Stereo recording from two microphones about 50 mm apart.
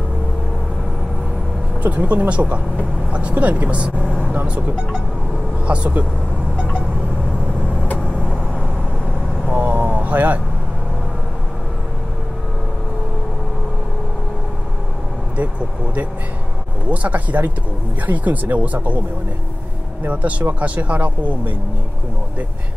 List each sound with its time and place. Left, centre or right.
1.8 s speech: right
5.7 s speech: right
9.5 s vehicle: right
16.9 s speech: right
20.1 s speech: right